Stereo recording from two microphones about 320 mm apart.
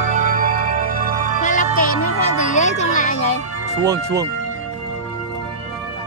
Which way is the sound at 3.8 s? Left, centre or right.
Centre.